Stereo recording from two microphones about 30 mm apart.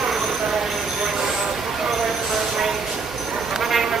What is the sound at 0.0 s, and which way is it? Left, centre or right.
Vehicle, centre.